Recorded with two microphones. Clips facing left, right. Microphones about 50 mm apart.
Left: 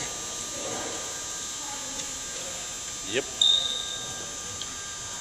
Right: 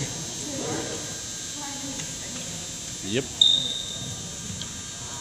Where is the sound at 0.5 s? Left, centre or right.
Left.